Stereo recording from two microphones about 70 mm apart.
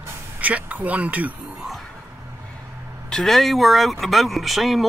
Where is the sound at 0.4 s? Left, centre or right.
Right.